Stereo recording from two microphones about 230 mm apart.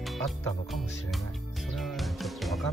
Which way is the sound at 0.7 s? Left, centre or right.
Centre.